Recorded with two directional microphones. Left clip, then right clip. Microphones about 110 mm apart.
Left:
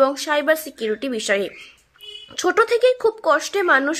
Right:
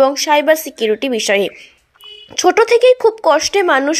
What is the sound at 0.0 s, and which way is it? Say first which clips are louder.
A woman's voice: right 6 dB; 30° right (ahead or behind).